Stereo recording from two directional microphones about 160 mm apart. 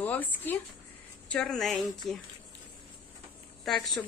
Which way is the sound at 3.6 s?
Centre (ahead or behind).